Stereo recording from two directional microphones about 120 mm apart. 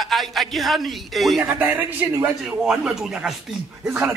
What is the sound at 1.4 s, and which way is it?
Speech, 20° right (ahead or behind).